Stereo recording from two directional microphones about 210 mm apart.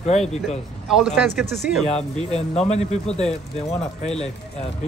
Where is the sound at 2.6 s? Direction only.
30° left (ahead or behind).